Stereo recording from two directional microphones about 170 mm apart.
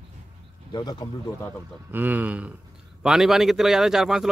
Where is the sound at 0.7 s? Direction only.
25° left (ahead or behind).